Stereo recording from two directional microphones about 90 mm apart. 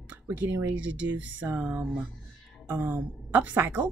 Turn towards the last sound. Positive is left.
turn(degrees=-20)  # may be behind; listen again after turning